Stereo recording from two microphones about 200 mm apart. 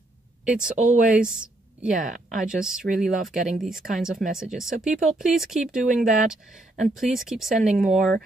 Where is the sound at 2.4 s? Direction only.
5° right (ahead or behind).